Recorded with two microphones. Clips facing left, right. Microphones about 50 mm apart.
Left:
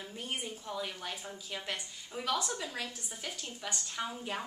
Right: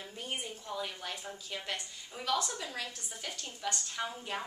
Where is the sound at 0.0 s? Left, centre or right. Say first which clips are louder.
Left 1 dB; centre.